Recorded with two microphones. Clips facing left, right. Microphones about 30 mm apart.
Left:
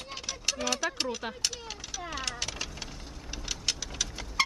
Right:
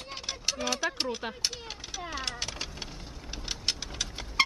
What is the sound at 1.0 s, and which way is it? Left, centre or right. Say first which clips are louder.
Speech: even; right.